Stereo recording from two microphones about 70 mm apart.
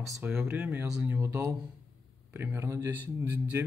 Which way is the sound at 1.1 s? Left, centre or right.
Right.